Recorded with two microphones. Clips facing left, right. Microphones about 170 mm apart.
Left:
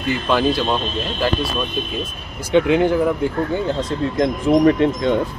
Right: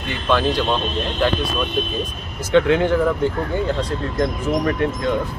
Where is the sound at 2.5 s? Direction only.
15° left (ahead or behind).